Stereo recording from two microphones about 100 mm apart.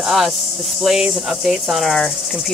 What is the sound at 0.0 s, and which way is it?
Speech, centre (ahead or behind).